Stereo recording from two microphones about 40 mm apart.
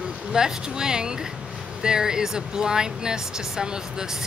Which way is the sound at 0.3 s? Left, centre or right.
Centre.